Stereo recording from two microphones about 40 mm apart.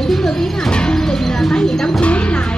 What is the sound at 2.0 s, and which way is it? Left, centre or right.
Music, left.